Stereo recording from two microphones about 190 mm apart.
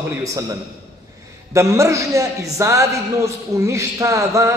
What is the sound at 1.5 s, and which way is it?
A man's voice, 15° right (ahead or behind).